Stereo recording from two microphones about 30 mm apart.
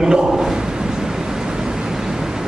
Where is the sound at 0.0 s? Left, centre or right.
Right.